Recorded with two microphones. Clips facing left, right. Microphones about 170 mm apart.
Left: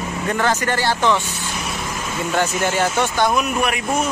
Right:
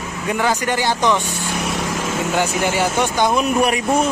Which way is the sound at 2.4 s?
10° right (ahead or behind).